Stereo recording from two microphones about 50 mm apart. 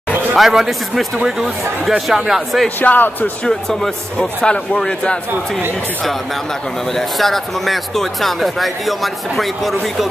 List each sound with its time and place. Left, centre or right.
0.4 s speech: centre
2.8 s speech: left
3.4 s speech: centre
4.4 s a man's voice: left
6.9 s speech: centre